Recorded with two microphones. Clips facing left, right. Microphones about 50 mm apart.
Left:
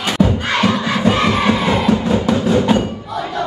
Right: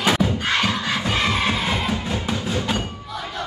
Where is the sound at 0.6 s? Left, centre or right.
Left.